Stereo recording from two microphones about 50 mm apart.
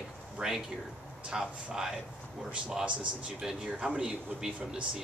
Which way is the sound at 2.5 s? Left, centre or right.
Right.